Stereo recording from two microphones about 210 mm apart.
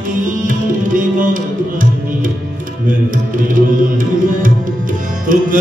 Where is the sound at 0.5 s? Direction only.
40° right (ahead or behind).